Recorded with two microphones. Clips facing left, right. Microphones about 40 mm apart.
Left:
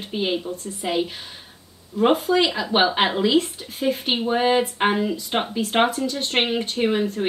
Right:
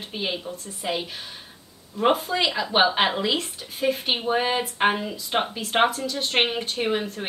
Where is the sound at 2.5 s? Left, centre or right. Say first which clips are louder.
Left 2 dB; centre.